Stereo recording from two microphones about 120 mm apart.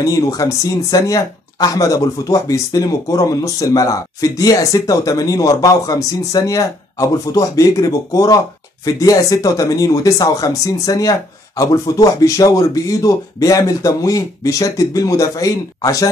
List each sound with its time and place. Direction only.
0.0 s speech: 30° left (ahead or behind)